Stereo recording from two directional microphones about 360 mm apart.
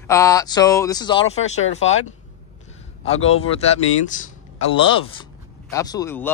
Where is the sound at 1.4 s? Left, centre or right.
Left.